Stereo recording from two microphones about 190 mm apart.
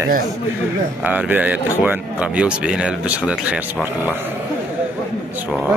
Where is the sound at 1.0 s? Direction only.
10° right (ahead or behind).